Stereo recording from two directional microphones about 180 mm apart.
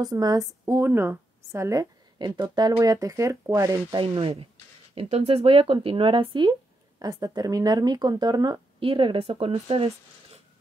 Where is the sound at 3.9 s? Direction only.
30° right (ahead or behind).